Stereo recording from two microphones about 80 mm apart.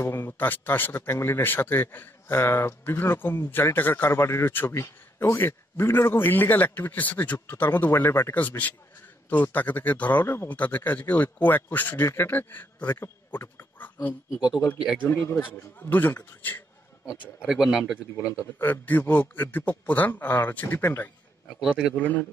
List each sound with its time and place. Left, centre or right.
0.0 s a man's voice: left
8.4 s a man's voice: left
15.5 s a man's voice: left
17.5 s speech: centre
18.2 s a man's voice: left
18.6 s a man's voice: left
21.5 s speech: centre
21.9 s a man's voice: left